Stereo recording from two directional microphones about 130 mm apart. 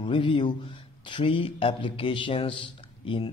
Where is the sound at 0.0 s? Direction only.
40° left (ahead or behind).